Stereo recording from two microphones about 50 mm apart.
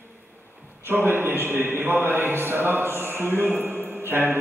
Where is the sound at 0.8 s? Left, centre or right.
Right.